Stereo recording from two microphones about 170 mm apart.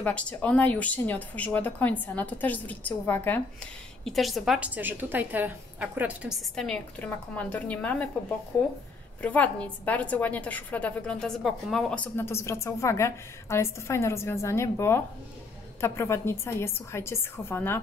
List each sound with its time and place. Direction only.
0.0 s a woman's voice: 10° left (ahead or behind)
4.0 s a woman's voice: centre (ahead or behind)
6.5 s a woman's voice: 5° left (ahead or behind)
9.2 s a woman's voice: 10° left (ahead or behind)